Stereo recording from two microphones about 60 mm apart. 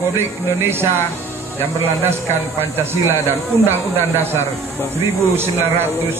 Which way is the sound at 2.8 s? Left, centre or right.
Right.